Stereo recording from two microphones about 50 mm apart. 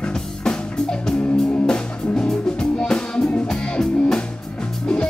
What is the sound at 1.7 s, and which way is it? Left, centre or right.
Music, centre.